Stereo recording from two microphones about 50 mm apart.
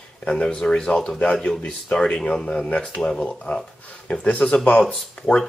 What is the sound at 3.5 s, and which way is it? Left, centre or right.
Speech, left.